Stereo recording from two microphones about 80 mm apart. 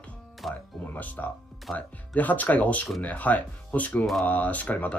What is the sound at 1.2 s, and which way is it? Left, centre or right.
Speech, left.